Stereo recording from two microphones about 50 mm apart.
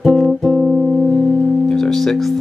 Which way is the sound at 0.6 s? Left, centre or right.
Right.